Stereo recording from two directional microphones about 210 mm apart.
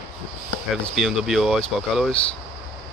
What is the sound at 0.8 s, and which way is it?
Speech, centre (ahead or behind).